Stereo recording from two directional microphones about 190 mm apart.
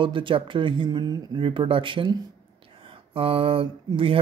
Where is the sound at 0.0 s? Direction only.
25° right (ahead or behind).